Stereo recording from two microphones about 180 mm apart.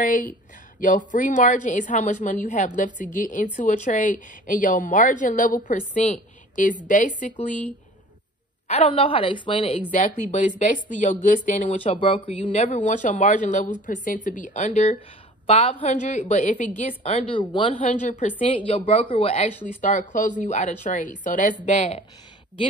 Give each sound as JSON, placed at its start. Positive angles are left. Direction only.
{"t": 0.0, "sound": "a woman's voice", "side_deg": 45}
{"t": 8.6, "sound": "a woman's voice", "side_deg": 35}
{"t": 10.6, "sound": "a woman's voice", "side_deg": 45}
{"t": 17.8, "sound": "a woman's voice", "side_deg": 40}
{"t": 18.4, "sound": "a woman's voice", "side_deg": 30}